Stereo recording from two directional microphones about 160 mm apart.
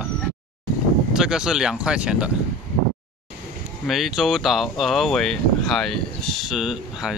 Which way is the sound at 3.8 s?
Centre (ahead or behind).